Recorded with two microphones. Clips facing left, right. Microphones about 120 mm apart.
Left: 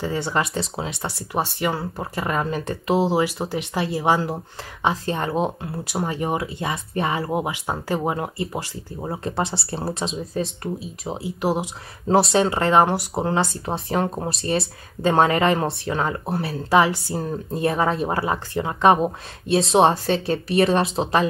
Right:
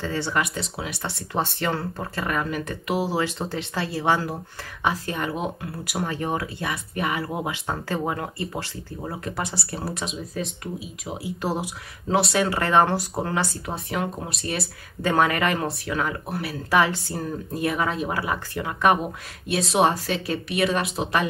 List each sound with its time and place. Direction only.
0.0 s speech: 15° left (ahead or behind)
0.3 s speech: 30° left (ahead or behind)
1.0 s speech: 15° left (ahead or behind); by 3.1 s 30° left (ahead or behind)
3.1 s speech: 15° left (ahead or behind)
11.1 s speech: 20° left (ahead or behind)
12.1 s speech: 30° left (ahead or behind)